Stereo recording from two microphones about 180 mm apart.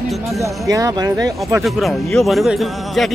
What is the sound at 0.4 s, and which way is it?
Speech, 20° right (ahead or behind).